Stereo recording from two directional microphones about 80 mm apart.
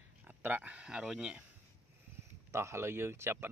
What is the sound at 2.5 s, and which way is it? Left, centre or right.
Speech, right.